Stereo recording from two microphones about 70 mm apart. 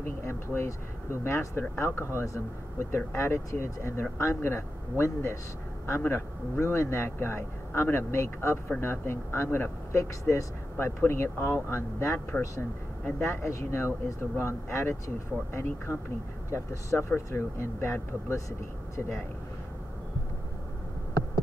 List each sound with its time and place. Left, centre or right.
0.0 s vehicle: left
1.2 s speech: left